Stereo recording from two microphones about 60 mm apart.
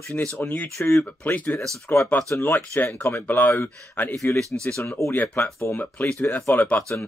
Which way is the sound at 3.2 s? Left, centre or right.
Left.